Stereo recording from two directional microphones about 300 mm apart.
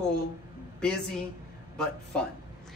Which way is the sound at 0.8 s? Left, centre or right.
Centre.